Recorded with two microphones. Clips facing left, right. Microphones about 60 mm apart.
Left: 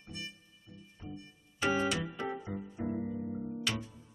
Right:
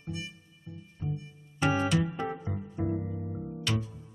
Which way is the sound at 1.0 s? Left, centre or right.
Centre.